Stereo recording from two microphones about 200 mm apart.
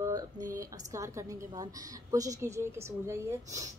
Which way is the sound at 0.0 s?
20° right (ahead or behind).